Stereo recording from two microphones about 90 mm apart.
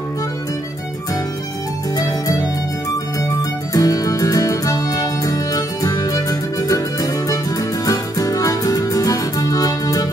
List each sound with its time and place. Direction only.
3.7 s music: 40° left (ahead or behind)